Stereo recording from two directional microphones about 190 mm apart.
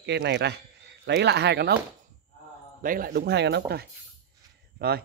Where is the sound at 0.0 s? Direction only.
60° right (ahead or behind).